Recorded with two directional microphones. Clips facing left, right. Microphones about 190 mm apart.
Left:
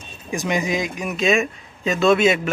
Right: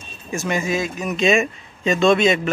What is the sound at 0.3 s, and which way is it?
Speech, 15° left (ahead or behind).